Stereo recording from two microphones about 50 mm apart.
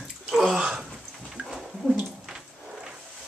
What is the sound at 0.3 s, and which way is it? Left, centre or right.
Bathtub, centre.